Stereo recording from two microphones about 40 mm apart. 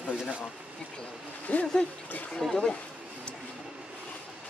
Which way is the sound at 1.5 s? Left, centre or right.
Left.